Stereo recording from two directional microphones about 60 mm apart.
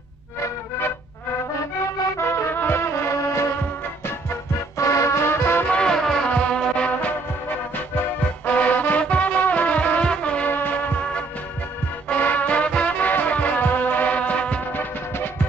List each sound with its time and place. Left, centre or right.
2.1 s music: left
2.9 s music: left
5.7 s music: centre
6.2 s music: centre
10.5 s music: left
12.1 s music: left